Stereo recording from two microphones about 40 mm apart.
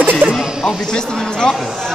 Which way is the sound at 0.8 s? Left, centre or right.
Centre.